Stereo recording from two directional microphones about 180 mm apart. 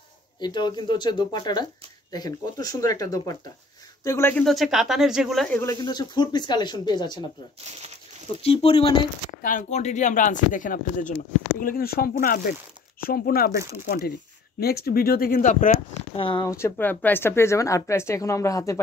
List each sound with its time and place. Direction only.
0.4 s speech: 25° left (ahead or behind); by 5.6 s centre (ahead or behind)
5.6 s speech: 20° left (ahead or behind)
8.4 s speech: 35° left (ahead or behind)
9.4 s speech: 45° left (ahead or behind)
16.2 s speech: 25° left (ahead or behind)
16.4 s speech: 15° left (ahead or behind)